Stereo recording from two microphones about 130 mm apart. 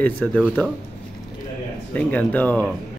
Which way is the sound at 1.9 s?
10° left (ahead or behind).